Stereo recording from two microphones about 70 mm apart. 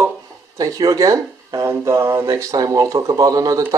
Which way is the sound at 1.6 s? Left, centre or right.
Right.